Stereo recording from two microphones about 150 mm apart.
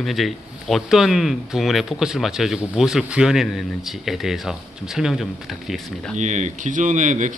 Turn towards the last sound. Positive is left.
turn(degrees=-55)  # may be behind; listen again after turning